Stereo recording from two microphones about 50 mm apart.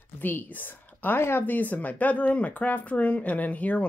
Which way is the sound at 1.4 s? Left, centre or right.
Left.